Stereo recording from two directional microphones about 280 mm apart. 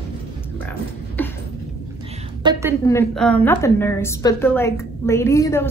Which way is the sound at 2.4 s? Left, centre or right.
Centre.